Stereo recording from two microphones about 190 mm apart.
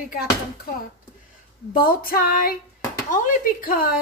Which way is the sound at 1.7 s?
50° left (ahead or behind).